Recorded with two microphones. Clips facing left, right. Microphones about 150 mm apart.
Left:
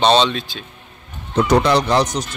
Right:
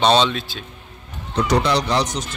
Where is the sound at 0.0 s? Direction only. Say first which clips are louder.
Left 2 dB; 10° right (ahead or behind).